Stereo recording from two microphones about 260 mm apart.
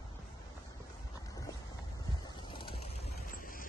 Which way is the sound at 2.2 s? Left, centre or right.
Centre.